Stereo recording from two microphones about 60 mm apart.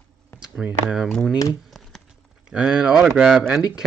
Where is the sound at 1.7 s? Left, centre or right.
Centre.